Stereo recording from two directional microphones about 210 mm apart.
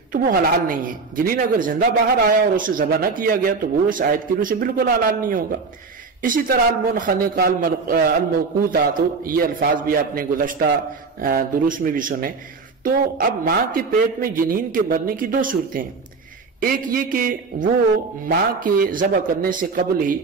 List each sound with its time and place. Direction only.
0.1 s a man's voice: 40° right (ahead or behind)